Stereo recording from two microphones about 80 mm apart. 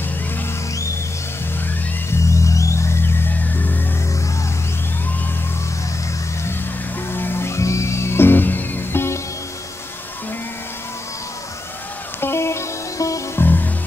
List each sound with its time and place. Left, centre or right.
2.0 s music: left
7.1 s music: left
12.2 s music: left
13.4 s music: left